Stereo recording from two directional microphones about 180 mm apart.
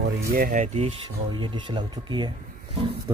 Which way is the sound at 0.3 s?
50° right (ahead or behind).